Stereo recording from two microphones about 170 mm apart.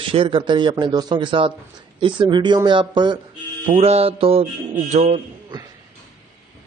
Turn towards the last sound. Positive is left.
turn(degrees=-40)  # may be behind; listen again after turning